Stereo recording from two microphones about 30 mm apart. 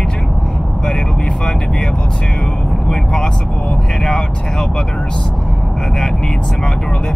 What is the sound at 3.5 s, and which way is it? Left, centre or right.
Vehicle, left.